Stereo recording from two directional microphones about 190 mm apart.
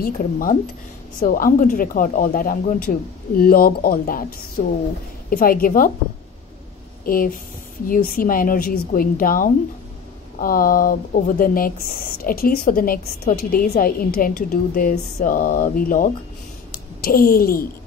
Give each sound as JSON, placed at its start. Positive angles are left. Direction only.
{"t": 0.0, "sound": "speech", "side_deg": 45}
{"t": 5.3, "sound": "speech", "side_deg": 50}
{"t": 7.1, "sound": "a woman's voice", "side_deg": 50}